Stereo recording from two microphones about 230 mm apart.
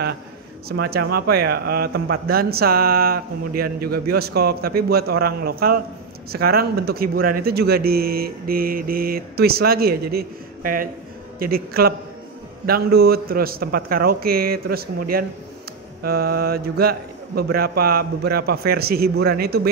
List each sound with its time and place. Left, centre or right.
0.7 s a man's voice: right
2.2 s mantra: right
17.4 s a man's voice: right